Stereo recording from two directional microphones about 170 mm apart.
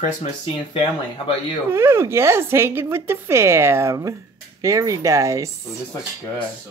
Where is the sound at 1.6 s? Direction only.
15° right (ahead or behind).